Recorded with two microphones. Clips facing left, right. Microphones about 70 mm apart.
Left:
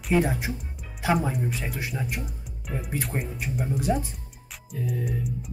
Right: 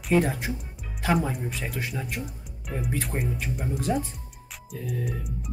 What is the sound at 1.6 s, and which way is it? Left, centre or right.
Speech, centre.